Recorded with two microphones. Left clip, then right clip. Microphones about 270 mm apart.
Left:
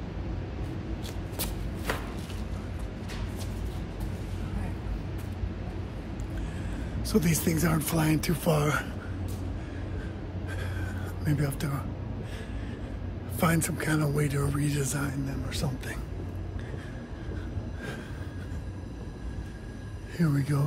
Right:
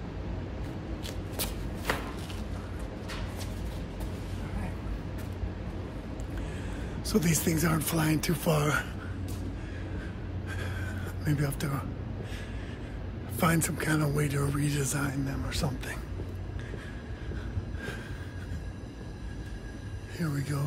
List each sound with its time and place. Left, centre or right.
1.9 s a sound: centre
7.0 s speech: centre
11.2 s speech: centre
13.4 s speech: centre
20.2 s speech: left